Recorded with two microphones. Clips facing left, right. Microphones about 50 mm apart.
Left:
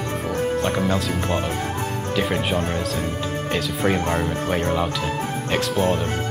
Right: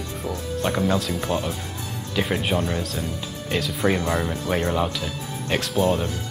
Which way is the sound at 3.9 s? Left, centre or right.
Left.